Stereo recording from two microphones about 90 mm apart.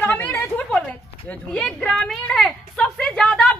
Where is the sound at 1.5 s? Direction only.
5° left (ahead or behind).